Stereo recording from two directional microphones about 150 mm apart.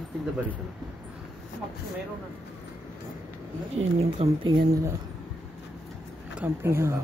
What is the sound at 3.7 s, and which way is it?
Speech, 45° right (ahead or behind).